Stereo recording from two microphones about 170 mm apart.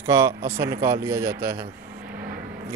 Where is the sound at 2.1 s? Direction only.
60° right (ahead or behind).